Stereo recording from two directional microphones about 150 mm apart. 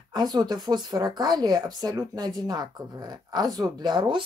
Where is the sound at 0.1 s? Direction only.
30° right (ahead or behind).